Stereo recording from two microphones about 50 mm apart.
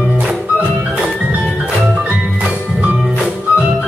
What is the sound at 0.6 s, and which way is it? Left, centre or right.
Music, right.